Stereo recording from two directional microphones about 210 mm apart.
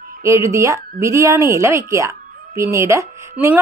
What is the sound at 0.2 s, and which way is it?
Speech, 15° right (ahead or behind).